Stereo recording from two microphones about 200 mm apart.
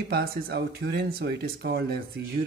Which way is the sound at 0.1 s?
55° right (ahead or behind).